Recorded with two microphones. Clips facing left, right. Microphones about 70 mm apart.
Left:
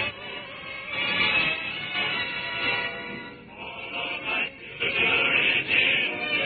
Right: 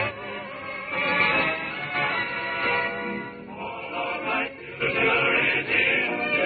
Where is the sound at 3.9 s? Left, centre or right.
Right.